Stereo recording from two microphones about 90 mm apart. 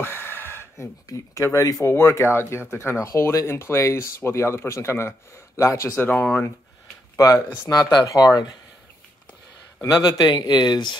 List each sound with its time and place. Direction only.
0.0 s a sound: 25° left (ahead or behind)
1.0 s speech: 40° left (ahead or behind)
1.9 s speech: 25° left (ahead or behind)
7.2 s speech: 40° left (ahead or behind)
9.9 s speech: 50° left (ahead or behind)